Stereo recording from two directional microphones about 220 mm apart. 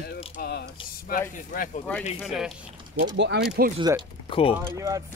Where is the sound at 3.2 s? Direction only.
50° right (ahead or behind).